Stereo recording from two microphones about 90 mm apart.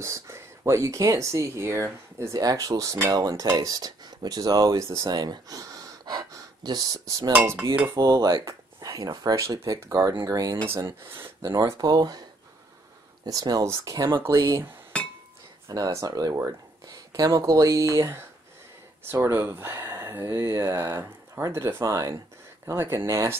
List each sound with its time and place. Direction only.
0.0 s speech: 35° right (ahead or behind)
5.1 s speech: 50° right (ahead or behind)
7.3 s speech: 20° right (ahead or behind)
7.9 s speech: 35° right (ahead or behind)
11.8 s speech: 45° right (ahead or behind)
14.9 s chink: 15° left (ahead or behind)
15.7 s speech: 40° right (ahead or behind)
19.3 s speech: 30° right (ahead or behind)